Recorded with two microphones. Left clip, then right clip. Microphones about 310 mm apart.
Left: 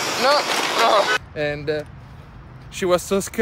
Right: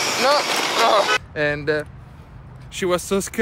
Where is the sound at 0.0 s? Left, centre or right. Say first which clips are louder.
Even; centre.